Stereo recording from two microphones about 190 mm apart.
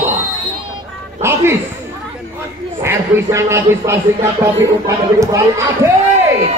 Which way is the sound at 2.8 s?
15° right (ahead or behind).